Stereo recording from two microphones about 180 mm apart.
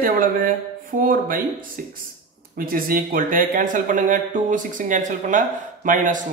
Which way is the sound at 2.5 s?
50° right (ahead or behind).